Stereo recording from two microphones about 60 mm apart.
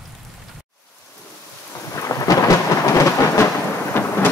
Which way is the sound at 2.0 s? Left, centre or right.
Left.